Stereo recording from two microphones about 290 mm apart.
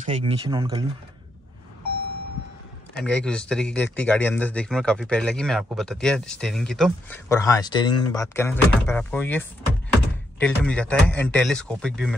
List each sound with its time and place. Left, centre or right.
0.0 s speech: right
3.0 s speech: centre